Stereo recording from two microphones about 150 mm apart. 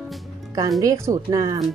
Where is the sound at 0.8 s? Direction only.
20° right (ahead or behind).